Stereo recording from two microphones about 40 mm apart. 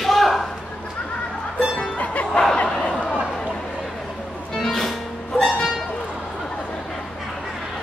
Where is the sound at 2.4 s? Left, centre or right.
Left.